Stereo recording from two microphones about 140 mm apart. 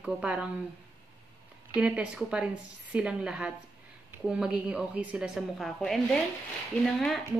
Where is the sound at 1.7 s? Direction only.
10° right (ahead or behind).